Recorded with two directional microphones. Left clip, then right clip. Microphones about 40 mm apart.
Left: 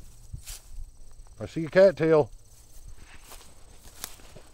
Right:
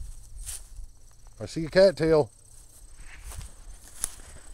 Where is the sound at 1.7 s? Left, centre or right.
Right.